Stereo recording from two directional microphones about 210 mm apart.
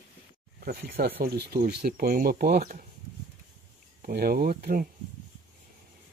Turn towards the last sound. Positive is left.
turn(degrees=-45)  # may be behind; listen again after turning